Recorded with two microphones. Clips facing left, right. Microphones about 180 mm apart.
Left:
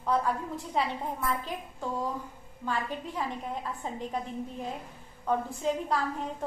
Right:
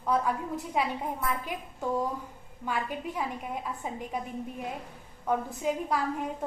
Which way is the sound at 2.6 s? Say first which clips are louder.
Right 1 dB; 10° right (ahead or behind).